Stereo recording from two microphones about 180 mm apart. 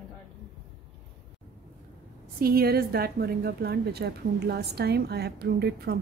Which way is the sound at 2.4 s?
55° right (ahead or behind).